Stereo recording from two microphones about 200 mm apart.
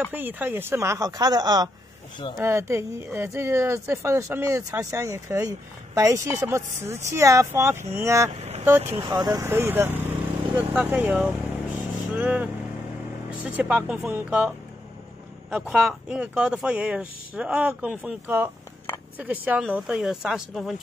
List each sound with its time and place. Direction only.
0.1 s speech: 10° right (ahead or behind)
8.4 s vehicle: 35° right (ahead or behind)
8.6 s speech: 10° right (ahead or behind)
8.9 s speech: 25° right (ahead or behind)
11.8 s vehicle: 5° right (ahead or behind)
13.6 s speech: 5° right (ahead or behind)
15.5 s speech: centre (ahead or behind)